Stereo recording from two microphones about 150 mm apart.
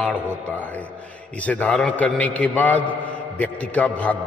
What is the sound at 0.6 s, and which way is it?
A man's voice, 10° left (ahead or behind).